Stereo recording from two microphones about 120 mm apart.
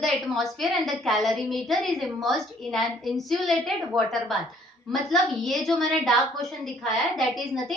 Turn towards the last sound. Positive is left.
turn(degrees=0)  # may be behind; listen again after turning